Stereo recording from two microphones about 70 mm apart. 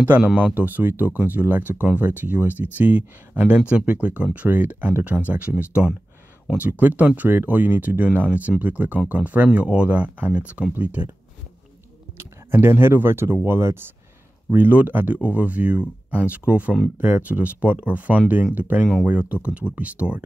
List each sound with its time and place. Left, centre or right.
0.6 s speech: right
12.4 s speech: right
14.5 s speech: right